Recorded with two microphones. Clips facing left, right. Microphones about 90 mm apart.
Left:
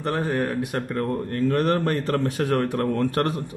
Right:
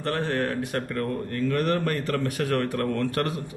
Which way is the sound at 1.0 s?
35° left (ahead or behind).